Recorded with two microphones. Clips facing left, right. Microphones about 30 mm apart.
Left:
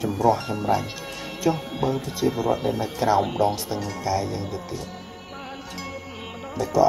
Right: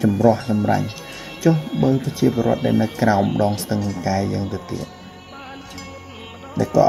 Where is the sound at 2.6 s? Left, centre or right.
Right.